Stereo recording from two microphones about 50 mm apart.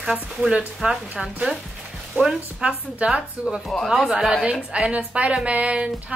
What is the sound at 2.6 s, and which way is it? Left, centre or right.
A woman's voice, right.